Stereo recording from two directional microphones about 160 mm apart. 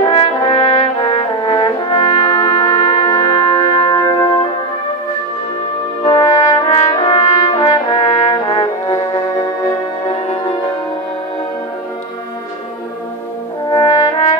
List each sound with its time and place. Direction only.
0.0 s brass instrument: 30° left (ahead or behind)
3.8 s music: 20° left (ahead or behind)
6.0 s brass instrument: 25° left (ahead or behind)
9.7 s music: 30° left (ahead or behind)
13.7 s brass instrument: 25° left (ahead or behind)